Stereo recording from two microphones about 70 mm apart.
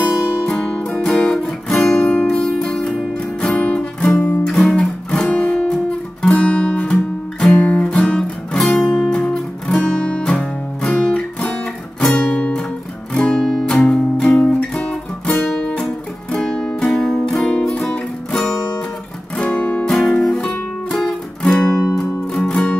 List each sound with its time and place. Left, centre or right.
0.5 s music: centre
3.4 s music: centre
4.5 s guitar: centre
6.9 s music: centre
7.5 s music: centre
8.8 s music: centre
13.1 s guitar: centre
14.5 s music: centre
19.3 s guitar: centre
19.8 s music: centre